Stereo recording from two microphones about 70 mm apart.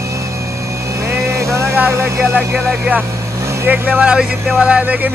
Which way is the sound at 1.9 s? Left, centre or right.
Right.